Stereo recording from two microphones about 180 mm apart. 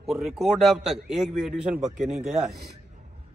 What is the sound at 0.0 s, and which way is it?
A man's voice, centre (ahead or behind).